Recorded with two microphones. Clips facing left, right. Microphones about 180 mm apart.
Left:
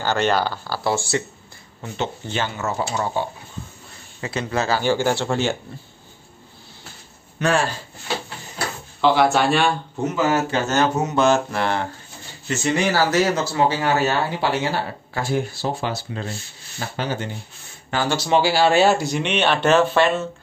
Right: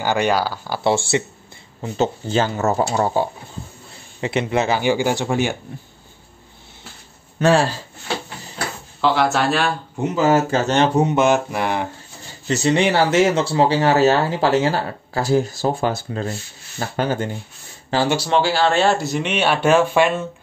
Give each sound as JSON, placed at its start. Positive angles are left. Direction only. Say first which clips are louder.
{"t": 0.0, "sound": "speech", "louder": "right 1 dB", "side_deg": -10}
{"t": 0.8, "sound": "mantra", "louder": "right 4 dB", "side_deg": -25}
{"t": 1.8, "sound": "speech", "louder": "right 6 dB", "side_deg": -40}
{"t": 4.2, "sound": "speech", "louder": "right 4 dB", "side_deg": -25}
{"t": 7.3, "sound": "speech", "louder": "right 5 dB", "side_deg": -35}
{"t": 9.0, "sound": "speech", "louder": "left 1 dB", "side_deg": 0}
{"t": 10.3, "sound": "mantra", "louder": "right 3 dB", "side_deg": -40}
{"t": 11.2, "sound": "speech", "louder": "right 1 dB", "side_deg": -15}
{"t": 12.4, "sound": "speech", "louder": "right 4 dB", "side_deg": -35}
{"t": 18.3, "sound": "speech", "louder": "left 3 dB", "side_deg": 10}